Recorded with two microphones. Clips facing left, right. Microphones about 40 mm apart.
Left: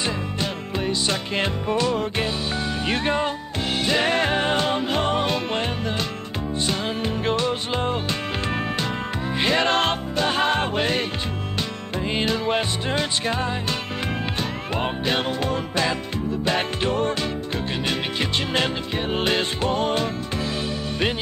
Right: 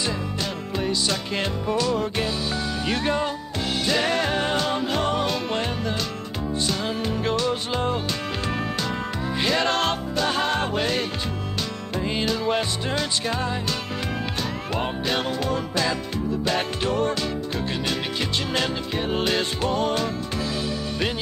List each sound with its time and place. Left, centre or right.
0.0 s music: left
7.2 s music: left
12.1 s music: left
14.8 s music: left
18.5 s music: left